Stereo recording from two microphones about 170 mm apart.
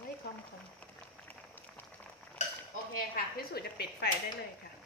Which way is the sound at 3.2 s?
65° left (ahead or behind).